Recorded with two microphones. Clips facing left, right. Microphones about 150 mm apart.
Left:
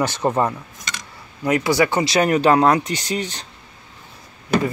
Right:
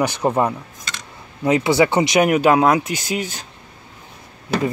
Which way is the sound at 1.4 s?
20° right (ahead or behind).